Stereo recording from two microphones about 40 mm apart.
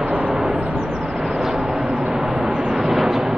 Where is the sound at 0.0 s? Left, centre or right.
Right.